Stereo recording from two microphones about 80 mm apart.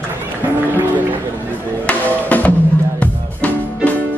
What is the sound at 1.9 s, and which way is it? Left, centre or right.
Music, centre.